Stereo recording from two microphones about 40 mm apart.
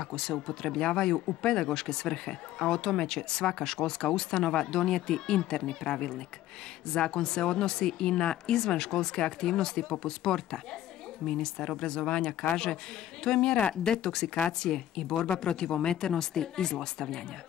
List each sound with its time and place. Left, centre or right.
0.0 s speech: centre